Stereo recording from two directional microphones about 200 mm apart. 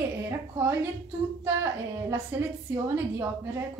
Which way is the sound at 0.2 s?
10° right (ahead or behind).